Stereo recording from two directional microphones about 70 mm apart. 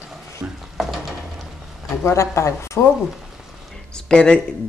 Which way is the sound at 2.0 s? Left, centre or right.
Left.